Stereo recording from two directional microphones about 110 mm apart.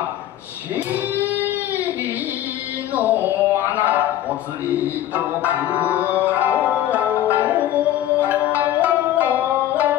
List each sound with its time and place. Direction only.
1.2 s music: 15° right (ahead or behind)
2.9 s music: 15° right (ahead or behind)
3.5 s a sound: 15° right (ahead or behind)
5.1 s music: 15° right (ahead or behind)